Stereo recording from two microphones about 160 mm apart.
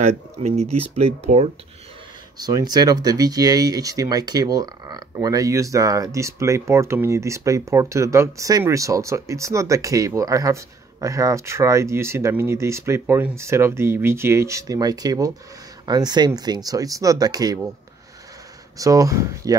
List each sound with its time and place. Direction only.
0.4 s speech: 40° right (ahead or behind)
2.3 s speech: 25° right (ahead or behind)
18.8 s speech: 20° right (ahead or behind)